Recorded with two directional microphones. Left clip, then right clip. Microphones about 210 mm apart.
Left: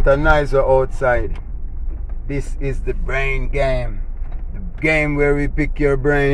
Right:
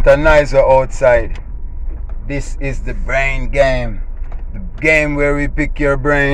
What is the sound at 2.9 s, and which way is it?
Speech, 20° right (ahead or behind).